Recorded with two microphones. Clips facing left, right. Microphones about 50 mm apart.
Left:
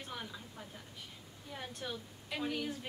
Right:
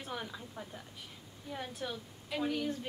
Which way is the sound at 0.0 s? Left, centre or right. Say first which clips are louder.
Right 3 dB; centre.